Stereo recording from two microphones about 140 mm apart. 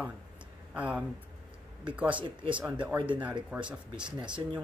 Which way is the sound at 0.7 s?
10° right (ahead or behind).